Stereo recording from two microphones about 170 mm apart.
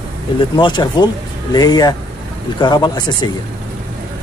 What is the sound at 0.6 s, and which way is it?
Speech, 25° left (ahead or behind).